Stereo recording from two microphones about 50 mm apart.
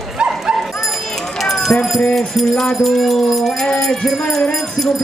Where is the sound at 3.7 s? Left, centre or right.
Centre.